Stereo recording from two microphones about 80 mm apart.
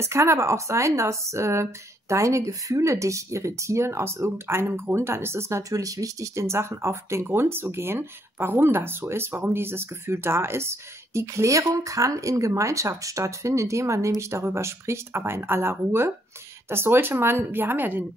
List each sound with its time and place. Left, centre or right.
0.0 s a woman's voice: right